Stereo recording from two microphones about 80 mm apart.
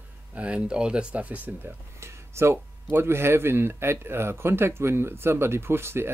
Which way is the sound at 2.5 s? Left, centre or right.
Right.